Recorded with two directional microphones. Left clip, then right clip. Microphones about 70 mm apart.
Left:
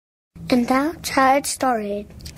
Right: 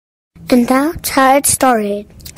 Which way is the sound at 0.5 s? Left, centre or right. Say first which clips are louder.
Right 7 dB; right.